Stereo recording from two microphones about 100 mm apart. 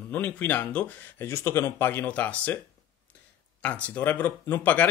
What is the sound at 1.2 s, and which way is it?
Speech, 25° left (ahead or behind).